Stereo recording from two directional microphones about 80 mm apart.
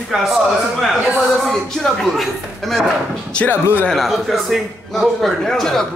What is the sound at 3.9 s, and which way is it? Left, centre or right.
A man's voice, centre.